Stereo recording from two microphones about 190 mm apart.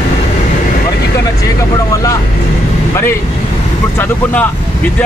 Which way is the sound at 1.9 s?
15° left (ahead or behind).